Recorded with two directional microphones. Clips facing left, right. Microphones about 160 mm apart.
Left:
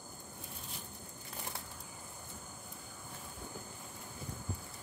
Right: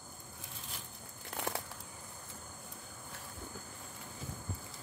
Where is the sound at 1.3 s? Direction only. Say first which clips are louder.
Right 8 dB; 90° right.